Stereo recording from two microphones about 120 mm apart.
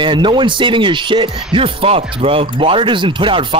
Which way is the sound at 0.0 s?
40° right (ahead or behind).